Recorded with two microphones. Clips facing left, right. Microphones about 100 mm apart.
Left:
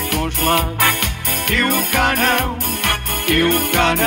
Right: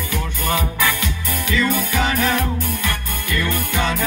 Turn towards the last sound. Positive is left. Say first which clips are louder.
# left 5 dB
turn(degrees=65)  # may be behind; listen again after turning